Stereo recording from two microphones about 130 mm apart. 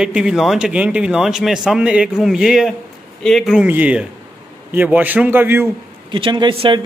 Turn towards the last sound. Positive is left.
turn(degrees=-40)  # may be behind; listen again after turning